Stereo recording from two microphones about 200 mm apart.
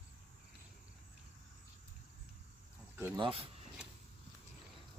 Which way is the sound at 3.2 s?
30° right (ahead or behind).